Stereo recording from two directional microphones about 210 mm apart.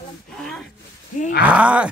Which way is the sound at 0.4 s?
5° left (ahead or behind).